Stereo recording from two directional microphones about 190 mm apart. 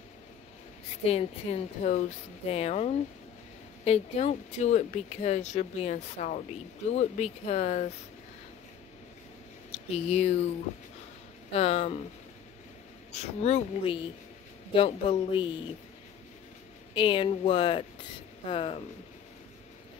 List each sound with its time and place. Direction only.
1.0 s speech: 35° left (ahead or behind)
9.7 s speech: 35° left (ahead or behind)
11.5 s speech: 35° left (ahead or behind)
13.1 s speech: 35° left (ahead or behind)
16.9 s speech: 25° left (ahead or behind)